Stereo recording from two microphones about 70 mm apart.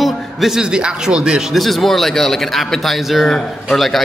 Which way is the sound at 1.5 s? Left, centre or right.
Centre.